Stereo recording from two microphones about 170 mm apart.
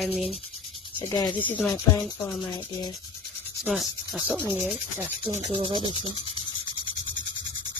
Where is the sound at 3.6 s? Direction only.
Centre (ahead or behind).